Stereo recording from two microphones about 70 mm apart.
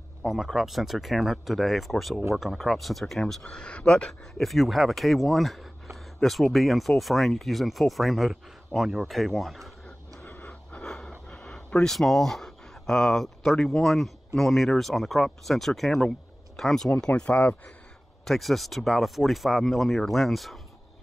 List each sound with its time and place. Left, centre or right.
0.2 s speech: centre
3.4 s speech: centre
4.4 s speech: centre
10.2 s a sound: left
10.8 s a sound: centre
11.1 s speech: centre
16.9 s speech: centre
18.2 s speech: centre